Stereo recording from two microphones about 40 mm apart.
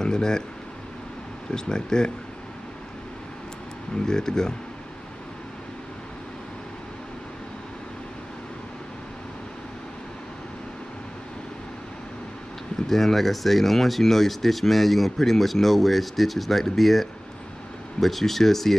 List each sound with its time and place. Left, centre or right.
0.0 s a sound: centre
1.5 s speech: centre
3.9 s speech: centre
12.8 s speech: centre